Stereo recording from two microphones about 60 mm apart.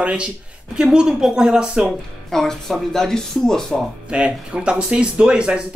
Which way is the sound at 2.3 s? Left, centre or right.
Centre.